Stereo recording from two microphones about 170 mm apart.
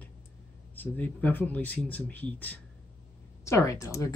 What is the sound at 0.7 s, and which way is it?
Speech, 10° left (ahead or behind).